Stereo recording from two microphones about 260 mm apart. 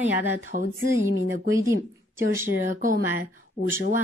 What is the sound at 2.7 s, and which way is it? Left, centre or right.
Speech, right.